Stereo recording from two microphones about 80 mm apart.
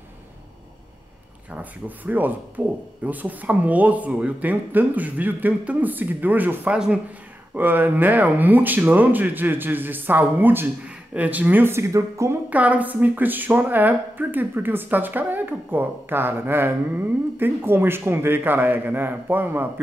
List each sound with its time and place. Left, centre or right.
1.5 s a woman's voice: right
12.4 s a woman's voice: centre